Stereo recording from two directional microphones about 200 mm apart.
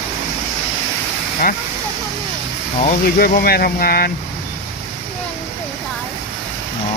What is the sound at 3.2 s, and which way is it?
Speech, 50° left (ahead or behind).